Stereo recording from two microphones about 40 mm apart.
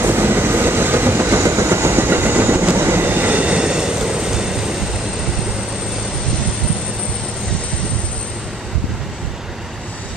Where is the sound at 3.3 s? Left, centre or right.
Right.